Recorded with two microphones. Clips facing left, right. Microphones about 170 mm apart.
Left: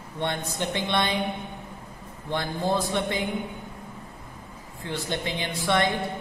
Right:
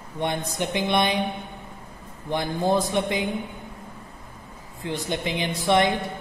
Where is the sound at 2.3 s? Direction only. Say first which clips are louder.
Right 3 dB; 20° right (ahead or behind).